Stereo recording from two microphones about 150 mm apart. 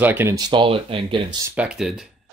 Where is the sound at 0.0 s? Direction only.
15° right (ahead or behind).